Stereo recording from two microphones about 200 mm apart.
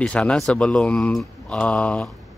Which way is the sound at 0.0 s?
5° left (ahead or behind).